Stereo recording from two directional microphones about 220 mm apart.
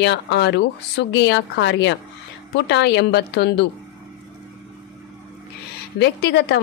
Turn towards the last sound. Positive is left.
turn(degrees=45)  # may be behind; listen again after turning